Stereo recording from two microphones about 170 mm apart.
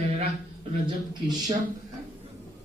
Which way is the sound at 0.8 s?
25° right (ahead or behind).